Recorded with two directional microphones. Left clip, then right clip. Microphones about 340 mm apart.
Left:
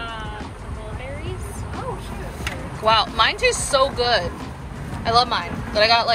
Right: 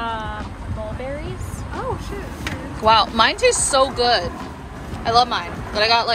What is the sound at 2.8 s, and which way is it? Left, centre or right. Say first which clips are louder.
Speech: right 3 dB; centre.